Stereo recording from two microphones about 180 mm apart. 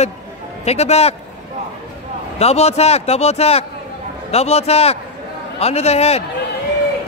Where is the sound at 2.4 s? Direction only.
35° left (ahead or behind).